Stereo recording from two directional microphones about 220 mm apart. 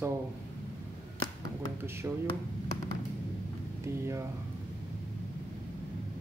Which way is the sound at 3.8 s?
10° right (ahead or behind).